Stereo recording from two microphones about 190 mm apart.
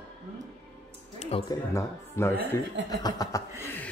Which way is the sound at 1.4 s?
15° left (ahead or behind).